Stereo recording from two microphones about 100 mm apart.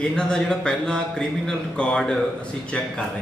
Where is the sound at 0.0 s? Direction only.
5° left (ahead or behind).